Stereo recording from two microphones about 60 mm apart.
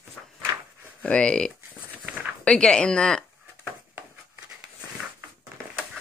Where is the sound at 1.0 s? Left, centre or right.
Centre.